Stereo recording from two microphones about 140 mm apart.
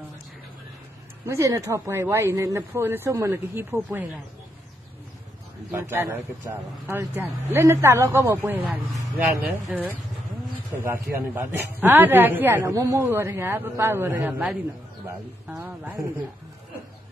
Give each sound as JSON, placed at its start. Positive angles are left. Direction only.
{"t": 1.2, "sound": "a woman's voice", "side_deg": -20}
{"t": 5.7, "sound": "a woman's voice", "side_deg": -20}